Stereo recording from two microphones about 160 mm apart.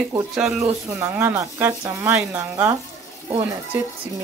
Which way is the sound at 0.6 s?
20° right (ahead or behind).